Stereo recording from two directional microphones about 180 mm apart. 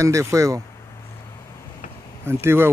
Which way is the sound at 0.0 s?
15° right (ahead or behind).